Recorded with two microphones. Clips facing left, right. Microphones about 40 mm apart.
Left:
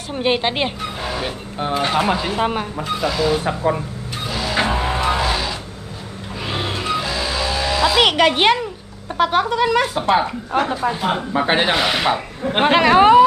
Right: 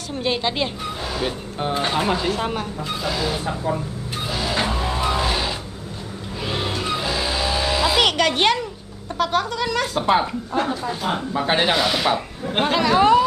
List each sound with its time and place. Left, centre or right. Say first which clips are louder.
0.1 s speech: left 4 dB; left
1.1 s music: even; centre
1.8 s speech: left 4 dB; left
2.0 s speech: left 3 dB; centre
3.1 s speech: left 5 dB; centre
3.4 s speech: left 4 dB; left
4.3 s vehicle: left 1 dB; centre
4.6 s music: left 6 dB; left
6.4 s vehicle: left 1 dB; centre
7.0 s music: left 1 dB; centre
8.0 s speech: left 5 dB; centre
11.7 s speech: left 2 dB; left
12.6 s speech: left 5 dB; left